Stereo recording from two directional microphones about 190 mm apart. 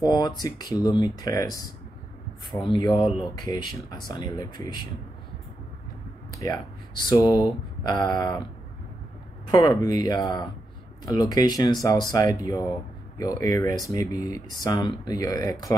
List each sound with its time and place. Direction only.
0.0 s speech: 20° left (ahead or behind)
3.0 s speech: centre (ahead or behind)
3.4 s speech: 20° left (ahead or behind)
6.4 s speech: 20° left (ahead or behind)
9.5 s speech: 20° left (ahead or behind)